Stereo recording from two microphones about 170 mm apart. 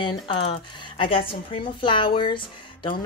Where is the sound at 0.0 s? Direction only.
30° left (ahead or behind).